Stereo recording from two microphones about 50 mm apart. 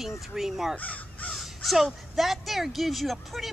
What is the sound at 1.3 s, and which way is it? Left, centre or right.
Speech, centre.